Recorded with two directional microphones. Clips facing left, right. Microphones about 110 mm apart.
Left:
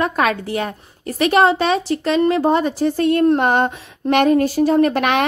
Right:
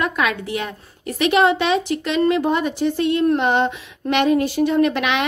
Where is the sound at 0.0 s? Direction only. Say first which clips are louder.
Left 3 dB; 40° left (ahead or behind).